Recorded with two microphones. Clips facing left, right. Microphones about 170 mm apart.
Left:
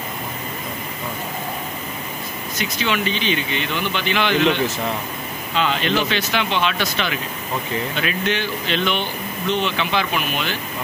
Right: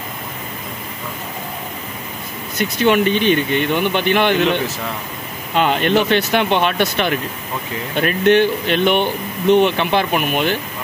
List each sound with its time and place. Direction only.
2.6 s speech: 50° right (ahead or behind)